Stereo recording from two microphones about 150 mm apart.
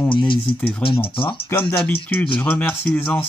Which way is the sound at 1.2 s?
15° left (ahead or behind).